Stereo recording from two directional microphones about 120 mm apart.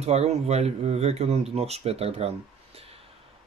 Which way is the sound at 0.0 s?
65° right (ahead or behind).